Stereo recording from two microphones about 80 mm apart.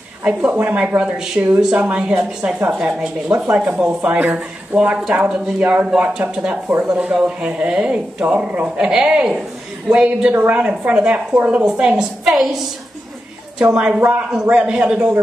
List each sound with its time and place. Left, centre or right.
0.2 s speech: centre
2.8 s a woman's voice: centre